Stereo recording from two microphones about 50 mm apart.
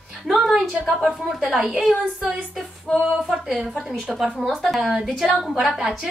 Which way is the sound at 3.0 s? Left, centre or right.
Centre.